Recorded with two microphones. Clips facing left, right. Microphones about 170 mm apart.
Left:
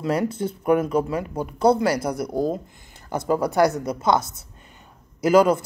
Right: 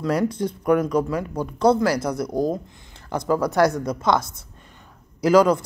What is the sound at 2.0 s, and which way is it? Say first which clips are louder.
Speech: right 1 dB; 30° left (ahead or behind).